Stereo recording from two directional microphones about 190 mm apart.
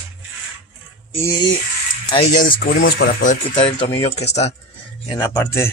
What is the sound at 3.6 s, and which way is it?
Speech, 25° left (ahead or behind).